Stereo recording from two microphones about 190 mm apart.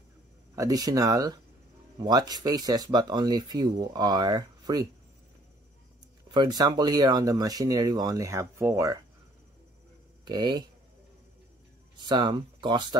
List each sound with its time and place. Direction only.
0.6 s speech: 20° right (ahead or behind)
6.3 s speech: 20° right (ahead or behind)
10.2 s speech: 25° right (ahead or behind)
12.0 s speech: 25° right (ahead or behind)